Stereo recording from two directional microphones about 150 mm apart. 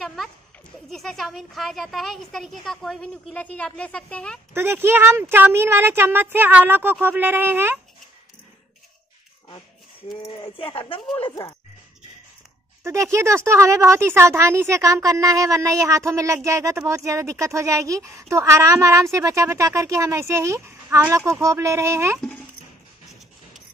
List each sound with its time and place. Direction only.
0.0 s a sound: centre (ahead or behind)
0.8 s speech: centre (ahead or behind)
4.6 s speech: 15° right (ahead or behind)
10.2 s speech: 40° left (ahead or behind)
12.8 s speech: 20° right (ahead or behind)